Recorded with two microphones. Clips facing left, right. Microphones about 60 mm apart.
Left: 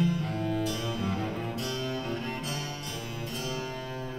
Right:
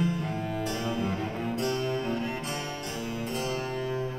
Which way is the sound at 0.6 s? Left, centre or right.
Right.